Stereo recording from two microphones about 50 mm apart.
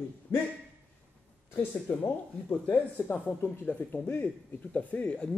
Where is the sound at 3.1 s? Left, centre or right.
Left.